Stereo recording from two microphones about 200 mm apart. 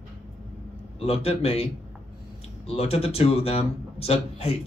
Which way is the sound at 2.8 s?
30° left (ahead or behind).